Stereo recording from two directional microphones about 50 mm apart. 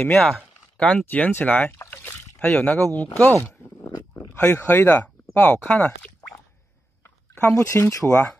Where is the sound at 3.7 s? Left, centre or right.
Left.